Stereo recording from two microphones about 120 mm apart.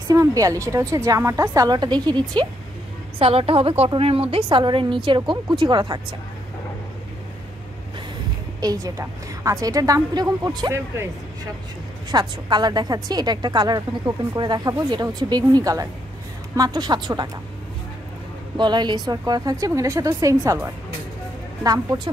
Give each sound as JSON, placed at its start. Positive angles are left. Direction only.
{"t": 0.1, "sound": "a woman's voice", "side_deg": -30}
{"t": 3.2, "sound": "a woman's voice", "side_deg": -50}
{"t": 8.5, "sound": "a woman's voice", "side_deg": -30}
{"t": 12.1, "sound": "a woman's voice", "side_deg": -35}
{"t": 18.6, "sound": "a woman's voice", "side_deg": -40}